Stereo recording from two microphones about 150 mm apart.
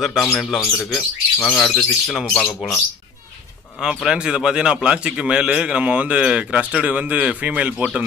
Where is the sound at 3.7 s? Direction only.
5° right (ahead or behind).